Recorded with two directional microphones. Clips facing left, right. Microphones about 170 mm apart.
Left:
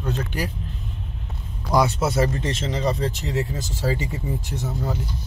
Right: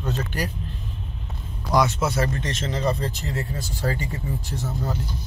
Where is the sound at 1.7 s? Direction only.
30° left (ahead or behind).